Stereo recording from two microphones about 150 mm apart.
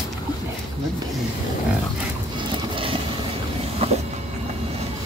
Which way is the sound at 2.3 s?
35° right (ahead or behind).